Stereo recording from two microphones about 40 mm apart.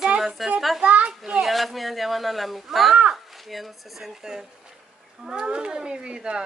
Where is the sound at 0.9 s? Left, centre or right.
Right.